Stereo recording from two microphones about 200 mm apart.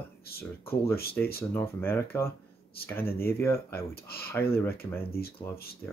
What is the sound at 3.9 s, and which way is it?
Speech, 50° left (ahead or behind).